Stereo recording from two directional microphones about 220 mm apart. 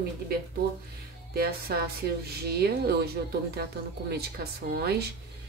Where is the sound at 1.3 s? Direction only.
45° right (ahead or behind).